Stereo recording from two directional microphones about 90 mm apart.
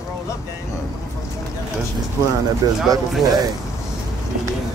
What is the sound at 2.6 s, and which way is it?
Speech, 50° right (ahead or behind).